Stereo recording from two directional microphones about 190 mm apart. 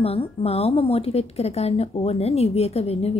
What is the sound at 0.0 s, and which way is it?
Speech, 30° left (ahead or behind).